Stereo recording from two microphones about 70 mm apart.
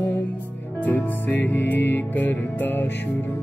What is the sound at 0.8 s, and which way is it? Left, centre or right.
Music, left.